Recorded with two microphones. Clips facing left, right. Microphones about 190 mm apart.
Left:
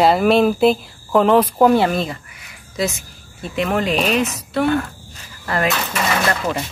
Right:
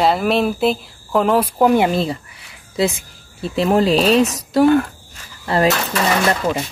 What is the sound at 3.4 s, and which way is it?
Speech, 30° right (ahead or behind).